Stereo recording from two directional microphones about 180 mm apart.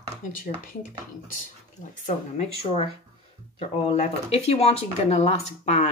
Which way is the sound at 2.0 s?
35° left (ahead or behind).